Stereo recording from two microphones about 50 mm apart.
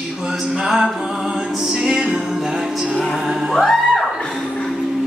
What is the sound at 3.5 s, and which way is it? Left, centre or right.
Music, centre.